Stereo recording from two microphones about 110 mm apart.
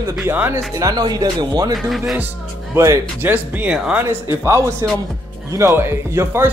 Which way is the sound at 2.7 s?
25° right (ahead or behind).